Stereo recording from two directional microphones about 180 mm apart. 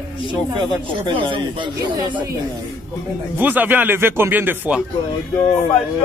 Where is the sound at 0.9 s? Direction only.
30° right (ahead or behind).